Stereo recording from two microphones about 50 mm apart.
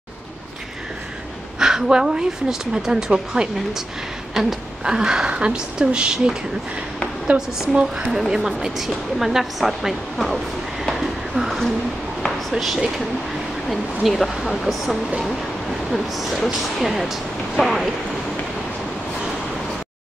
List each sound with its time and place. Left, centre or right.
1.6 s a woman's voice: centre